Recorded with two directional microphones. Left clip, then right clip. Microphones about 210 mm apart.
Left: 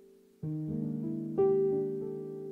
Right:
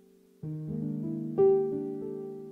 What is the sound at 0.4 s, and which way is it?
Music, 20° left (ahead or behind).